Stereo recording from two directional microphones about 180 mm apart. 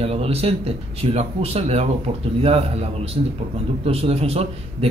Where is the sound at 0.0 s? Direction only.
35° right (ahead or behind).